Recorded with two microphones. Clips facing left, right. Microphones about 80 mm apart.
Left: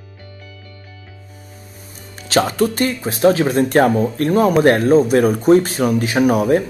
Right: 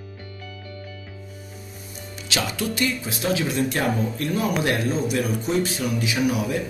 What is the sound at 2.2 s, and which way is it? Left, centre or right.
Speech, left.